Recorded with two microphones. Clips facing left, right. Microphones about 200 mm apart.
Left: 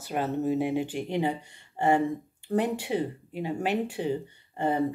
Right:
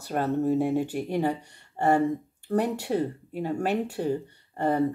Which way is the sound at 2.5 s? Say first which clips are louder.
Right 1 dB; 40° right (ahead or behind).